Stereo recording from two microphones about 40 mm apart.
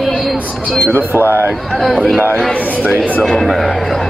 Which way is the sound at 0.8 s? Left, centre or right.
Right.